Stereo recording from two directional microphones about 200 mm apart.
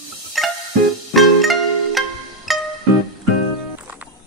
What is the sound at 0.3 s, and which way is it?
Music, centre (ahead or behind).